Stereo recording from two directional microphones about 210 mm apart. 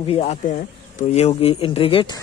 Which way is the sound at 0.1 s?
30° left (ahead or behind).